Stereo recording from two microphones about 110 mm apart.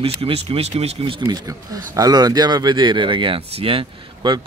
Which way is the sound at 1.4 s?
30° right (ahead or behind).